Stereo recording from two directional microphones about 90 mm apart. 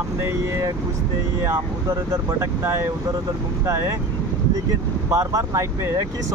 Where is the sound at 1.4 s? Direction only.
35° right (ahead or behind).